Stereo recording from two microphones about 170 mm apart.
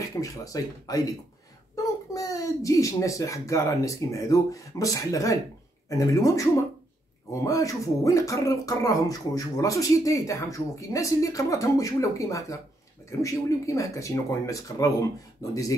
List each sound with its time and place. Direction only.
0.0 s speech: 20° left (ahead or behind)